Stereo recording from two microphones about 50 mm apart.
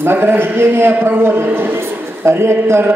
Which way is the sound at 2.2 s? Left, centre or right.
Right.